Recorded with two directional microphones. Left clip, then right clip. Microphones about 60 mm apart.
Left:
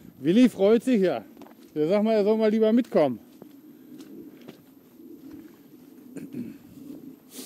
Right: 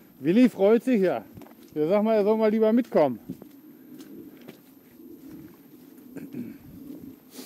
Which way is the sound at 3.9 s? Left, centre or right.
Right.